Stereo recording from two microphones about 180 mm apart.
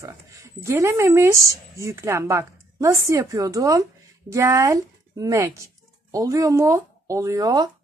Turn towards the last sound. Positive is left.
turn(degrees=-20)  # may be behind; listen again after turning